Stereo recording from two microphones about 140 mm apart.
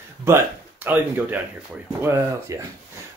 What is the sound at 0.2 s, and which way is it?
Speech, 15° right (ahead or behind).